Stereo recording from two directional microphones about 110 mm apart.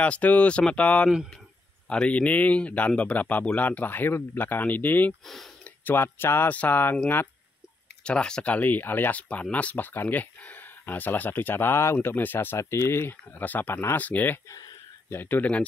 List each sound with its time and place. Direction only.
0.0 s speech: 10° left (ahead or behind)
5.2 s speech: 5° left (ahead or behind)
5.6 s speech: 20° left (ahead or behind)
8.0 s speech: 10° left (ahead or behind)